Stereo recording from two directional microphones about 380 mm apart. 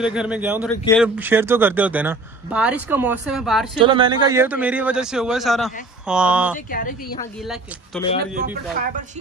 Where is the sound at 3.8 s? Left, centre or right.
Centre.